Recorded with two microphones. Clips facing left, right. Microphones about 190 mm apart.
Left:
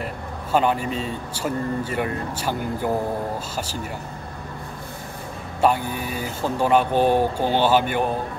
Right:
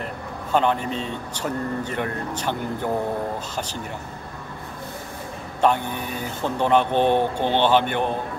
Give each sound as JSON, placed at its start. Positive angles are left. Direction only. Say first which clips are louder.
{"t": 0.5, "sound": "speech", "louder": "left 1 dB", "side_deg": 5}
{"t": 5.6, "sound": "speech", "louder": "even", "side_deg": 5}